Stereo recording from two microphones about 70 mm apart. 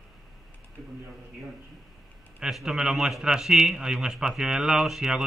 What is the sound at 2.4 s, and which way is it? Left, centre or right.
A man's voice, centre.